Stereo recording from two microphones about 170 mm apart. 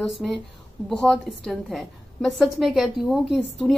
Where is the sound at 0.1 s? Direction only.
Centre (ahead or behind).